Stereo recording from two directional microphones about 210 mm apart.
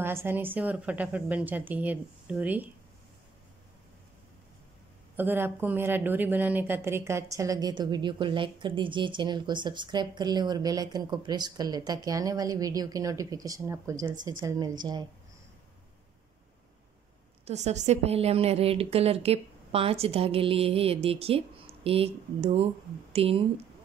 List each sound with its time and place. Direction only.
0.0 s speech: 10° right (ahead or behind)
5.1 s a woman's voice: 10° right (ahead or behind)
17.5 s a woman's voice: 30° right (ahead or behind)